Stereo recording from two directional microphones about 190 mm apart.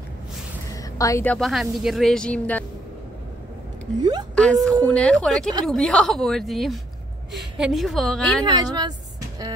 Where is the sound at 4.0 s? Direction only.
20° right (ahead or behind).